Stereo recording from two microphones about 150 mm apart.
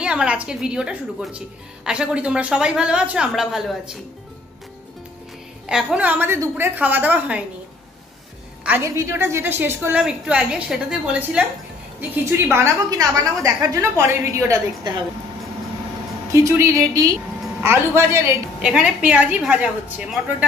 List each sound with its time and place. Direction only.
0.0 s a woman's voice: 5° right (ahead or behind)
5.7 s a woman's voice: 5° right (ahead or behind)
8.6 s a woman's voice: 15° right (ahead or behind)
12.0 s a woman's voice: 15° right (ahead or behind)
16.4 s a woman's voice: 20° right (ahead or behind)
18.6 s a woman's voice: 5° right (ahead or behind)